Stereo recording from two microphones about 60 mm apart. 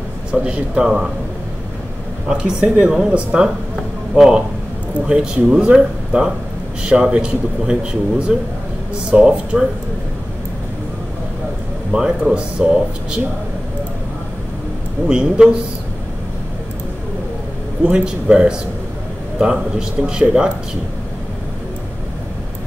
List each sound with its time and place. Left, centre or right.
0.3 s a man's voice: centre
2.2 s a man's voice: centre
4.1 s a man's voice: centre
12.2 s a man's voice: centre
15.0 s a man's voice: centre
17.9 s a man's voice: centre